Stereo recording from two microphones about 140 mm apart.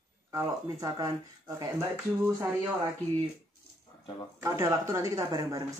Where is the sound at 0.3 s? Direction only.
25° right (ahead or behind).